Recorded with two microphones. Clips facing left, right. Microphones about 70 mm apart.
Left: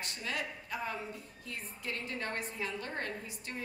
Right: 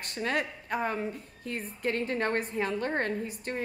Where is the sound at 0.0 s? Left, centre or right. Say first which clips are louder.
Right 8 dB; right.